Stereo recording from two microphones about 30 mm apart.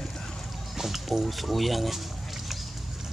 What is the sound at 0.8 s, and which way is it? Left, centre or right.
Boat, centre.